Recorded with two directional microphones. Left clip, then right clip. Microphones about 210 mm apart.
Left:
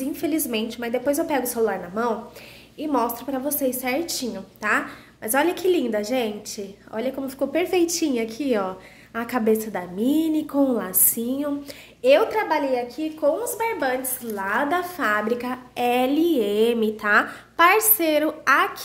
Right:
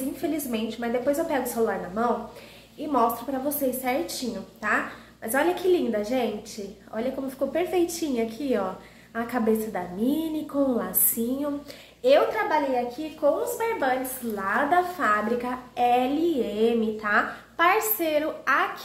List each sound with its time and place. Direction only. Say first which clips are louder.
0.2 s a woman's voice: left 5 dB; 50° left (ahead or behind)